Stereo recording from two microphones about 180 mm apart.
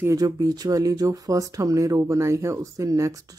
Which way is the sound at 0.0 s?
20° right (ahead or behind).